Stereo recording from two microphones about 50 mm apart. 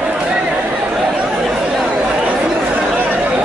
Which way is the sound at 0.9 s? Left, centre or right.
Centre.